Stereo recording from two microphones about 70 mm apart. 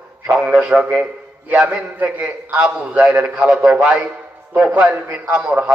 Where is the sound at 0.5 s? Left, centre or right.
Centre.